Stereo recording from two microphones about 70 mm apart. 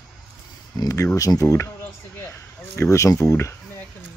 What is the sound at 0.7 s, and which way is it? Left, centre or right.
Speech, left.